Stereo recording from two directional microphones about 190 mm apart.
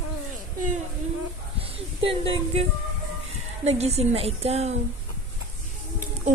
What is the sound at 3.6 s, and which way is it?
A man's voice, 35° right (ahead or behind).